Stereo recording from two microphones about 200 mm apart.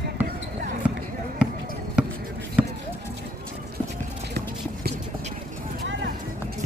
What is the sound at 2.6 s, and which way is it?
Basketball bounce, 5° right (ahead or behind).